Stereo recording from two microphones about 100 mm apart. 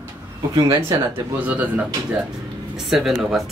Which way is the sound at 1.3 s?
15° right (ahead or behind).